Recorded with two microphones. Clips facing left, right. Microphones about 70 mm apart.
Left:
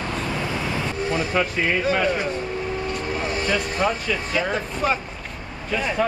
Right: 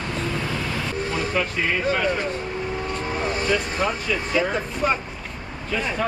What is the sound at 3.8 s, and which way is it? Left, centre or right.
Speech, centre.